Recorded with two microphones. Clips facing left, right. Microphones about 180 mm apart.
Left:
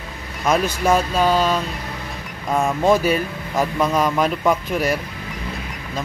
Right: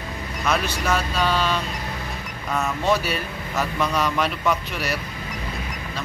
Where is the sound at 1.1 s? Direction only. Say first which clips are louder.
Left 5 dB; 40° left (ahead or behind).